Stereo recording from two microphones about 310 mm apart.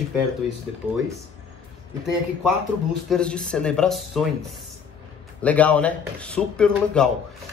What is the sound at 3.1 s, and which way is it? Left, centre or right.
Speech, centre.